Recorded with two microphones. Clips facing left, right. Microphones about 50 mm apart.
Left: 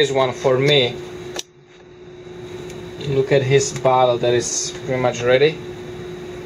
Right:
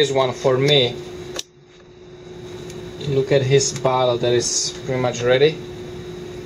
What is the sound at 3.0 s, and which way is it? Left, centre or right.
Speech, centre.